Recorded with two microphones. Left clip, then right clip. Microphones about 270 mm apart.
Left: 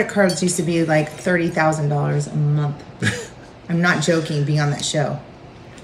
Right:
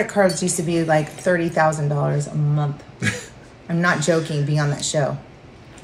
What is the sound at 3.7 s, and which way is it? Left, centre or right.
Speech, centre.